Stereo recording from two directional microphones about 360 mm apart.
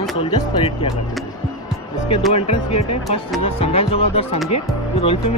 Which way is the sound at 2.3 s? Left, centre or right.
Centre.